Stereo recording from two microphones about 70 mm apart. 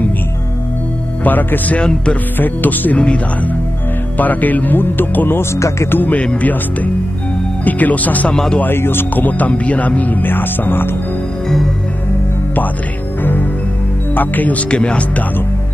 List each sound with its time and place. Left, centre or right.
1.2 s speech: left
1.8 s speech: centre
2.3 s speech: left
4.2 s speech: left
5.9 s speech: left
7.6 s speech: left
14.1 s speech: left
14.7 s speech: centre